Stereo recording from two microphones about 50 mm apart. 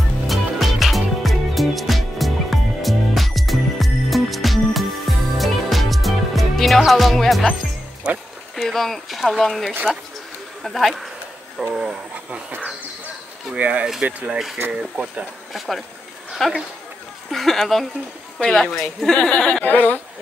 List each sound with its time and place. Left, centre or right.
0.3 s music: centre
8.0 s speech: centre
8.5 s speech: centre
11.6 s speech: centre
13.6 s speech: right
14.7 s speech: centre
15.5 s a woman's voice: centre
19.3 s a sound: centre
19.6 s speech: left